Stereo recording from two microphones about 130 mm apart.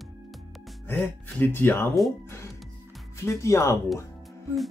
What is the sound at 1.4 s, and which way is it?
Speech, 15° left (ahead or behind).